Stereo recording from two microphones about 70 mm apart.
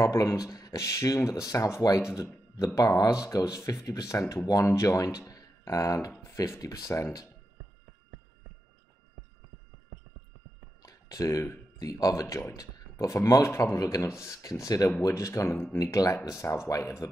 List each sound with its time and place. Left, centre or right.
0.0 s speech: left
2.0 s speech: left
2.5 s speech: left
5.3 s a sound: left
6.3 s speech: left
10.8 s a sound: left
11.8 s speech: left
12.5 s speech: left
13.5 s speech: left
15.8 s speech: left